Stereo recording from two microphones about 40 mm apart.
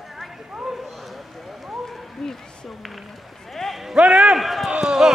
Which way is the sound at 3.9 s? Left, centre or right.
Right.